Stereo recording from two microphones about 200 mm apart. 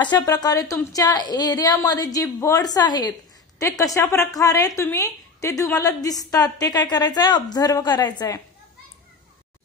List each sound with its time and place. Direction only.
0.0 s a woman's voice: 20° left (ahead or behind)